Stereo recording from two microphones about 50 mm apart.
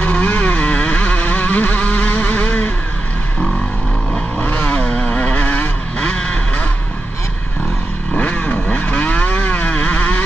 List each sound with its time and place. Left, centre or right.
0.0 s vehicle: left
4.4 s vehicle: left
5.9 s vehicle: centre
8.1 s vehicle: left